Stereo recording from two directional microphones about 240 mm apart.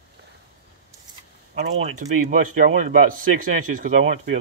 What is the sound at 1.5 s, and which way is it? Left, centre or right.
A man's voice, right.